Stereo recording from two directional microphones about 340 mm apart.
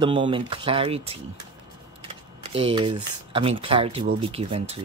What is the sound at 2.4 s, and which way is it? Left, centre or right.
Speech, centre.